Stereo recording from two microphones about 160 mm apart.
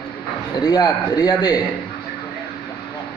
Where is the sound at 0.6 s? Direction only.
25° left (ahead or behind).